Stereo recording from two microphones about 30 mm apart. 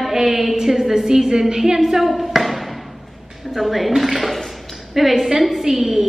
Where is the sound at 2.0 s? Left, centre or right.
Centre.